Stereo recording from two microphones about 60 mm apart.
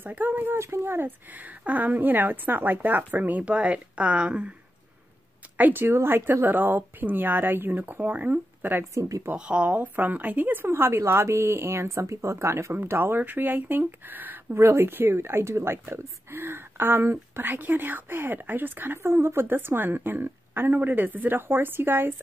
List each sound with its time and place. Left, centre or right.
0.0 s speech: right
0.6 s speech: right; by 4.6 s centre
5.6 s speech: right
9.3 s a woman's voice: centre; by 12.7 s right
12.7 s speech: right